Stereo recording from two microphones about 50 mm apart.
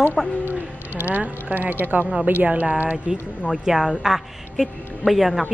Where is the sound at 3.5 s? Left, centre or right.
Centre.